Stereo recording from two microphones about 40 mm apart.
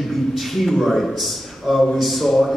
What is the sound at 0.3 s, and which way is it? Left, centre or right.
A man's voice, centre.